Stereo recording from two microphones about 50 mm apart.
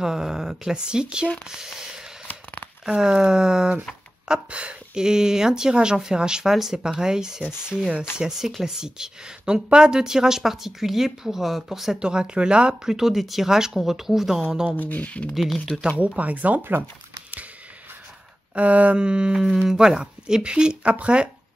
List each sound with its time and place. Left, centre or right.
0.0 s speech: centre
12.0 s speech: centre
12.9 s speech: centre
14.8 s speech: left
15.7 s speech: centre
16.2 s speech: right
18.5 s speech: right